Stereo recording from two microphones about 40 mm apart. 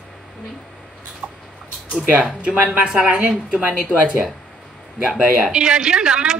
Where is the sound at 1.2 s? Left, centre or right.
Right.